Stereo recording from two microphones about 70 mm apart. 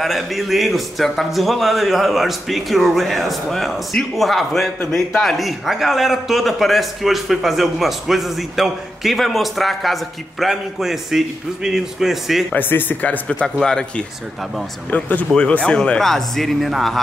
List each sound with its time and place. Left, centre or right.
0.0 s a man's voice: centre
12.5 s speech: left
13.3 s speech: centre
14.9 s speech: left; by 17.0 s centre